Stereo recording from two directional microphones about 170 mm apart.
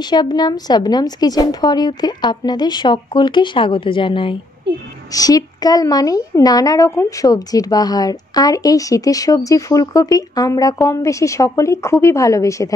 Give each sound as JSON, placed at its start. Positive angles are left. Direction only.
{"t": 0.0, "sound": "a woman's voice", "side_deg": 25}